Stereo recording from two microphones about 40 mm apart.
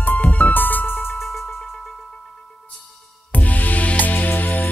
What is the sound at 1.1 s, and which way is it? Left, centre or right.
Music, centre.